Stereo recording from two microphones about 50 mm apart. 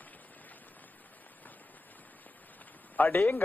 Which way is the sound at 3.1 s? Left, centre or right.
Left.